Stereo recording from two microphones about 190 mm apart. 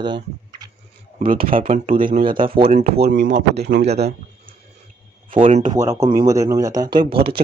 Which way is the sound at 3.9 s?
35° right (ahead or behind).